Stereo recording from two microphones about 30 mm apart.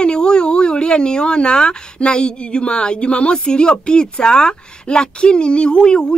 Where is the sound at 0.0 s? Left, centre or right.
Left.